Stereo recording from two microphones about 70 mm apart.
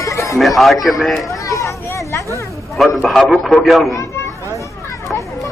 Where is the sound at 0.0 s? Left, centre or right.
Left.